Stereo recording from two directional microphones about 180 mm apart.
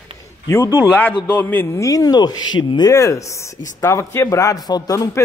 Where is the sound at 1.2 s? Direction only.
10° left (ahead or behind).